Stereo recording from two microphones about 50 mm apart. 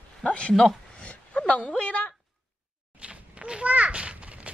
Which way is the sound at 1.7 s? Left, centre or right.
Left.